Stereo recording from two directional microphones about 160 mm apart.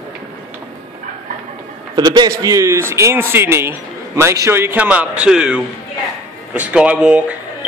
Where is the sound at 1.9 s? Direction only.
25° right (ahead or behind).